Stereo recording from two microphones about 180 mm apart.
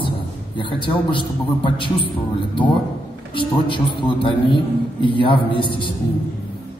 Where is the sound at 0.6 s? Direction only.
25° left (ahead or behind).